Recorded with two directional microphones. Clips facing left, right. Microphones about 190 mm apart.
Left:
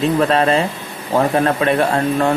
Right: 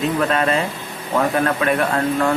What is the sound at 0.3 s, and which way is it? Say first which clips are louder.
A man's voice: left 4 dB; 30° left (ahead or behind).